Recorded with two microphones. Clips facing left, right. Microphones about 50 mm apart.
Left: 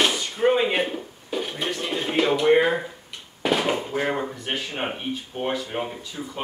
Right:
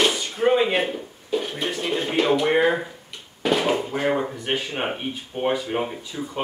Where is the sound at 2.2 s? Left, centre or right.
Centre.